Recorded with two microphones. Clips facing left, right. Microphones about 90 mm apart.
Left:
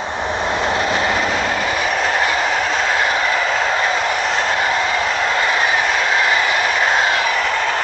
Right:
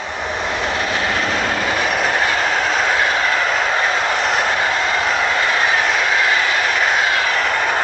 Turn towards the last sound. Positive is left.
turn(degrees=-10)  # may be behind; listen again after turning